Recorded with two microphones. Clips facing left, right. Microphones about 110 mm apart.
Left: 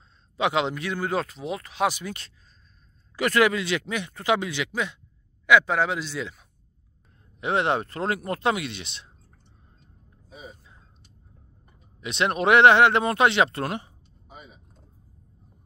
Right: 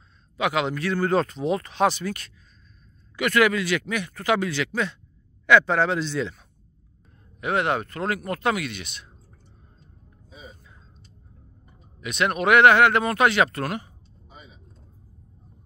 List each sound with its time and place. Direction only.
0.4 s speech: 25° left (ahead or behind)
3.2 s speech: 30° left (ahead or behind); by 6.3 s 10° left (ahead or behind)
7.3 s speech: 25° left (ahead or behind)
12.0 s speech: 25° left (ahead or behind)
14.3 s vehicle: 10° left (ahead or behind)